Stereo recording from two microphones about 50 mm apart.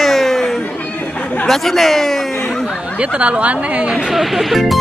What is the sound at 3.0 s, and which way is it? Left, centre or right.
Speech, right.